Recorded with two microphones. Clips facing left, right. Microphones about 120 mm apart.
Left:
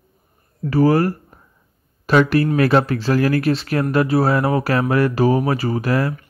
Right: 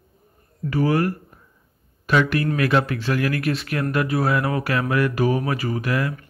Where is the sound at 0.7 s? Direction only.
35° left (ahead or behind).